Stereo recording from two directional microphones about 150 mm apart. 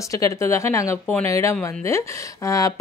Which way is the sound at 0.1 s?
20° left (ahead or behind).